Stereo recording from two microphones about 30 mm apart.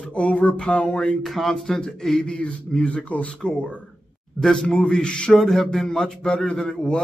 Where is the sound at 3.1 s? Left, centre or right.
Left.